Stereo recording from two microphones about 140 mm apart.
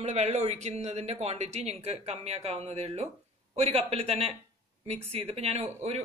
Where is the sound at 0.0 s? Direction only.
50° right (ahead or behind).